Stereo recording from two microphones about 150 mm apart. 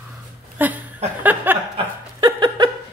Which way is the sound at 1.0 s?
45° right (ahead or behind).